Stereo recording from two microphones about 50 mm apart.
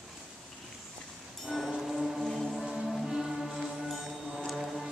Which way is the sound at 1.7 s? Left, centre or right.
Centre.